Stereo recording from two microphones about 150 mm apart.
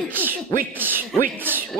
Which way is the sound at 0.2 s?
15° right (ahead or behind).